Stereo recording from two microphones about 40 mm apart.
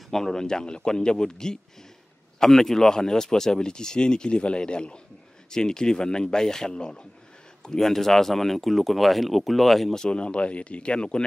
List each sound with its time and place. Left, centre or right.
0.1 s speech: centre
7.8 s speech: centre
9.9 s speech: left